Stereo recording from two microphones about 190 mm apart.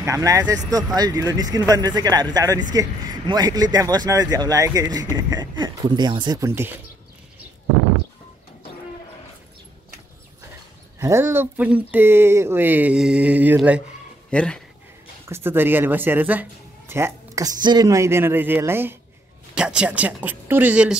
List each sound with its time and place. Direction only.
0.0 s speech: 15° right (ahead or behind)
11.0 s speech: 15° right (ahead or behind)
14.3 s speech: 5° left (ahead or behind)
15.2 s speech: 10° right (ahead or behind)